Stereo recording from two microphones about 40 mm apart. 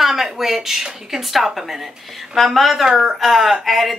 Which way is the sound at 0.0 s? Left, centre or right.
Centre.